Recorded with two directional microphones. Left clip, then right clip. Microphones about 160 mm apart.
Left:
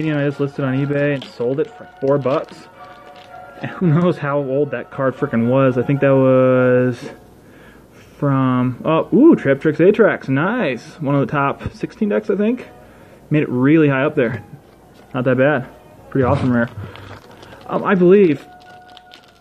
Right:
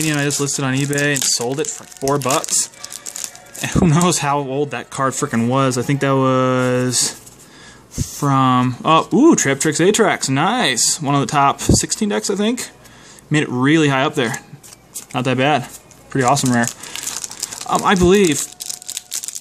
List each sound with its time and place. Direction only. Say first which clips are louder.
0.0 s speech: even; 40° right (ahead or behind)
3.6 s speech: right 2 dB; 45° right (ahead or behind)
8.2 s speech: right 3 dB; 45° right (ahead or behind)